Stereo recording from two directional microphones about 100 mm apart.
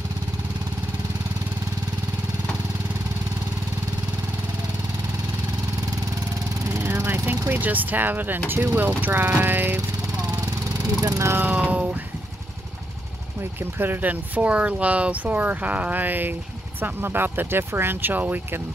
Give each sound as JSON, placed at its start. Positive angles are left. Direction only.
{"t": 6.7, "sound": "vehicle", "side_deg": -25}
{"t": 7.6, "sound": "speech", "side_deg": -15}
{"t": 8.5, "sound": "speech", "side_deg": -30}
{"t": 8.7, "sound": "speech", "side_deg": -20}
{"t": 9.8, "sound": "vehicle", "side_deg": -40}
{"t": 11.0, "sound": "speech", "side_deg": -35}
{"t": 11.3, "sound": "speech", "side_deg": -15}
{"t": 13.4, "sound": "speech", "side_deg": -20}